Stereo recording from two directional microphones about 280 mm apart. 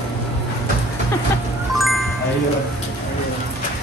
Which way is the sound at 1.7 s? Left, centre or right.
Centre.